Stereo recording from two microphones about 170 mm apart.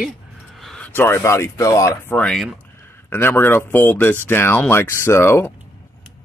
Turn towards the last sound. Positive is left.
turn(degrees=15)  # may be behind; listen again after turning